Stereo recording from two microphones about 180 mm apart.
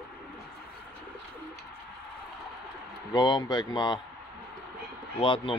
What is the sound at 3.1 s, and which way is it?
Speech, 25° left (ahead or behind).